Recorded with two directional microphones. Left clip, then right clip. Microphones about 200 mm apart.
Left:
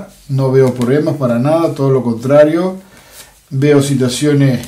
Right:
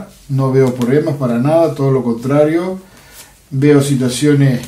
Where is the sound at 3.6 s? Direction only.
40° left (ahead or behind).